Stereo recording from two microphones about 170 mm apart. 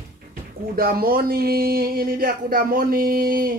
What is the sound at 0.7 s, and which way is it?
Speech, 60° right (ahead or behind).